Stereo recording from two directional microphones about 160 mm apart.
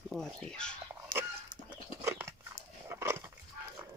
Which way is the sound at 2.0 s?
15° right (ahead or behind).